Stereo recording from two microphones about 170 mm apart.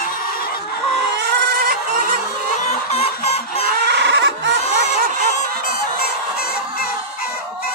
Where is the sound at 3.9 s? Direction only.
85° right.